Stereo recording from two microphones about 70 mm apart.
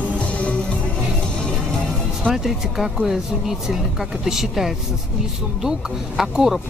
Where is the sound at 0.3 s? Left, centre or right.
Centre.